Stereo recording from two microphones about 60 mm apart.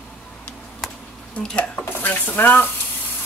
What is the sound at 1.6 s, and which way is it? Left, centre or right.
Speech, left.